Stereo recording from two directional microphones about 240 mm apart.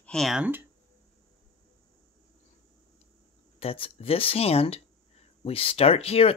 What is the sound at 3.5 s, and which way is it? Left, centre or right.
Speech, left.